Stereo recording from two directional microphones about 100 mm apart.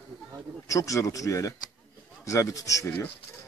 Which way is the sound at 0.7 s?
30° left (ahead or behind).